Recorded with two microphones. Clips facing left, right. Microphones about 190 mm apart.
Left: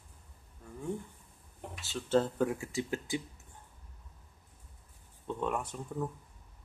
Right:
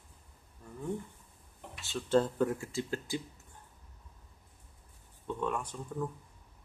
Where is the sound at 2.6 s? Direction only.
15° left (ahead or behind).